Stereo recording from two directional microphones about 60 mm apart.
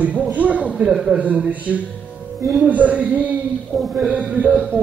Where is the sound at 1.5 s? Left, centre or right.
Right.